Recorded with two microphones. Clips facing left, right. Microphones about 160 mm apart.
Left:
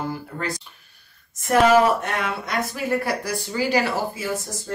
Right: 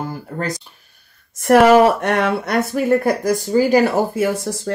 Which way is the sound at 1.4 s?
65° right (ahead or behind).